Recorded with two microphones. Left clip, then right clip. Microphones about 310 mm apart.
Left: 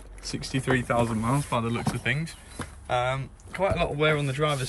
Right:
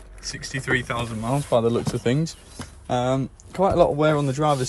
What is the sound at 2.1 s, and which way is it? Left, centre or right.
Speech, centre.